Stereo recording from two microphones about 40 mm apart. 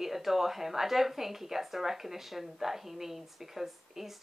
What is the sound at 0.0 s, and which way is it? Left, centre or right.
A woman's voice, centre.